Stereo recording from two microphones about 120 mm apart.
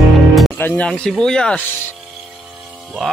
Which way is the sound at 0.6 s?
15° left (ahead or behind).